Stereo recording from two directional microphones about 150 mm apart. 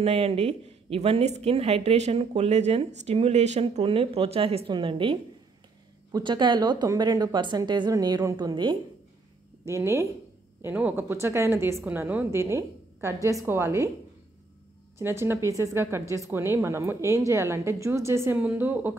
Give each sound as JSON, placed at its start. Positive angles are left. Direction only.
{"t": 0.0, "sound": "a woman's voice", "side_deg": -40}
{"t": 6.1, "sound": "a woman's voice", "side_deg": -30}
{"t": 9.7, "sound": "a woman's voice", "side_deg": -20}
{"t": 15.0, "sound": "a woman's voice", "side_deg": -15}